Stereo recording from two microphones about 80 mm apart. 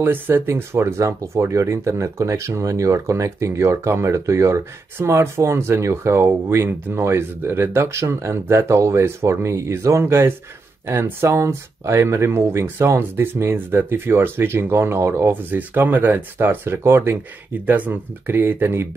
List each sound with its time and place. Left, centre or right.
0.0 s speech: right